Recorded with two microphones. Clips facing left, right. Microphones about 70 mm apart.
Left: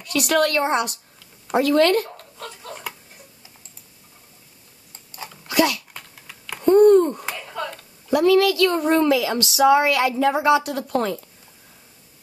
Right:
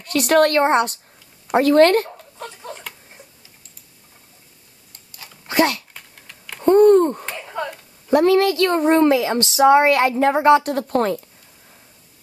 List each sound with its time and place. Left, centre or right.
0.0 s speech: right
2.3 s a sound: right
5.5 s dog: right
6.6 s a sound: right
7.3 s finger snapping: right
8.1 s speech: right